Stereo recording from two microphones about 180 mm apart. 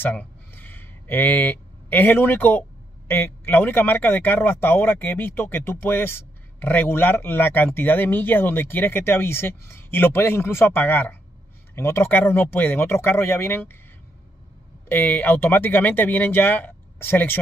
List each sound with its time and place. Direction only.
0.0 s a sound: 10° left (ahead or behind)
3.1 s a man's voice: 10° left (ahead or behind)
14.9 s a man's voice: 10° left (ahead or behind)